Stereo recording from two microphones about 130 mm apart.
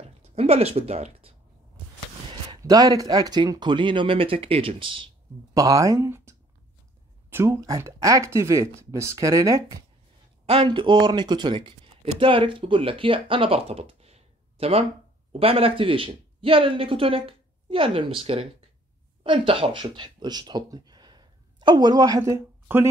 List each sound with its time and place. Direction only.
0.2 s speech: 50° right (ahead or behind)
2.5 s speech: 30° right (ahead or behind)
5.5 s speech: 25° right (ahead or behind)
10.5 s speech: 40° right (ahead or behind); by 22.8 s 20° right (ahead or behind)